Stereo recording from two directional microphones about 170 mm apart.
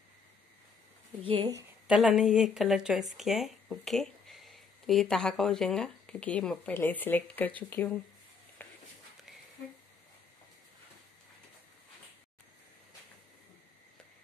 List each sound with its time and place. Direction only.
1.2 s speech: 30° right (ahead or behind)
1.9 s speech: 5° right (ahead or behind)
8.6 s a sound: 10° left (ahead or behind)